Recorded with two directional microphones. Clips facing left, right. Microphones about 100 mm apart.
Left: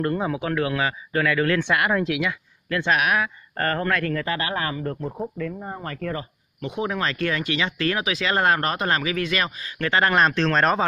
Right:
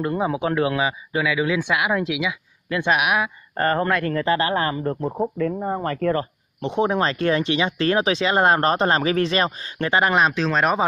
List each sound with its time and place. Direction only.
0.0 s speech: 15° right (ahead or behind)
2.7 s speech: 15° right (ahead or behind); by 6.2 s 45° right (ahead or behind)
6.6 s speech: 30° right (ahead or behind)
9.8 s speech: 15° right (ahead or behind)
10.2 s speech: 5° right (ahead or behind)